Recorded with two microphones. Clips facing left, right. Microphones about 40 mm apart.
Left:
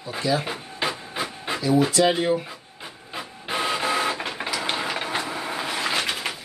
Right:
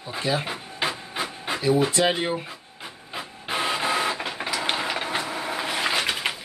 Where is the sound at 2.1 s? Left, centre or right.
Centre.